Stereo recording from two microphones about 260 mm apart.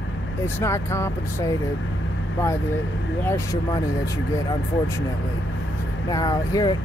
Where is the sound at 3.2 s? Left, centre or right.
Centre.